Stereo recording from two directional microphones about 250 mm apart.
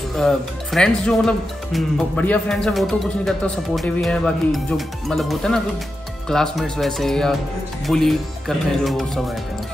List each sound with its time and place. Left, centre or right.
0.1 s speech: centre